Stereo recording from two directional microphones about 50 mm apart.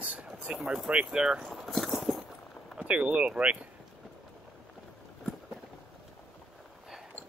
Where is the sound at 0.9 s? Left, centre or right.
Centre.